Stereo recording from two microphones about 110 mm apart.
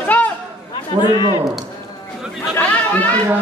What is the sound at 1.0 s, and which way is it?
Speech, 40° left (ahead or behind).